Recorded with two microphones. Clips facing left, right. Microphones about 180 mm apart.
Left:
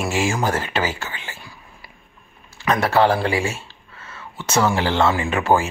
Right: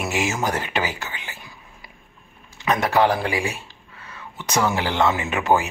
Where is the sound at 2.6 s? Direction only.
20° right (ahead or behind).